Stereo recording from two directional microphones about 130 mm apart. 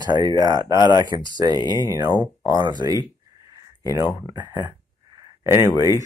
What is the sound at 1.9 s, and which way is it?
Speech, 30° right (ahead or behind).